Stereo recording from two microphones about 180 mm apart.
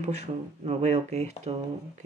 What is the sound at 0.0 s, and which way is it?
Speech, 35° right (ahead or behind).